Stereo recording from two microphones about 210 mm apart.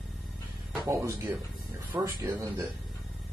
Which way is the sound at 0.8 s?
15° right (ahead or behind).